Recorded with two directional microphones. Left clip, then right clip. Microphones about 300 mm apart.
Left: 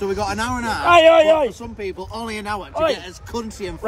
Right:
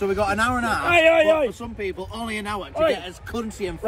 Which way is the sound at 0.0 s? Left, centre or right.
Centre.